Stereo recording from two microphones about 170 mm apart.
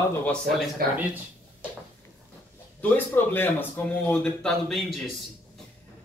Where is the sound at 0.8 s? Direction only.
60° right (ahead or behind).